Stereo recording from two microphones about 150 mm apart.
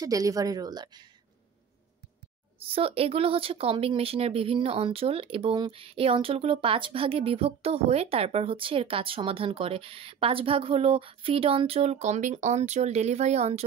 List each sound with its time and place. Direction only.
0.0 s a woman's voice: 25° right (ahead or behind)
2.6 s speech: 40° right (ahead or behind)